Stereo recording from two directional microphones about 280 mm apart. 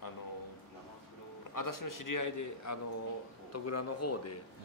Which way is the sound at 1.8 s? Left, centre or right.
Left.